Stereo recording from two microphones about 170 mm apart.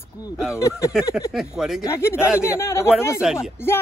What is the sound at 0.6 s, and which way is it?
Speech, 15° left (ahead or behind).